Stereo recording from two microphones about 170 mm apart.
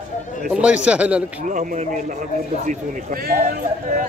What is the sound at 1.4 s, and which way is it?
Speech, 50° right (ahead or behind).